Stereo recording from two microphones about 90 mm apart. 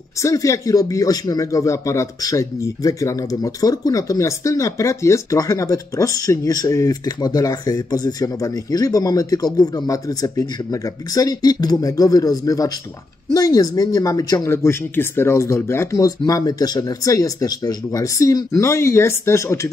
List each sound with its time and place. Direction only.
0.2 s a man's voice: 35° left (ahead or behind)
14.5 s a man's voice: 30° left (ahead or behind)